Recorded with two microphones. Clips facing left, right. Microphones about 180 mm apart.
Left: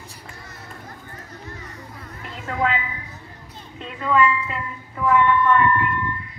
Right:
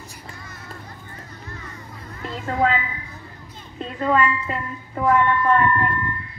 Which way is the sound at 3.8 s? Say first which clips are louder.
Even; 40° right (ahead or behind).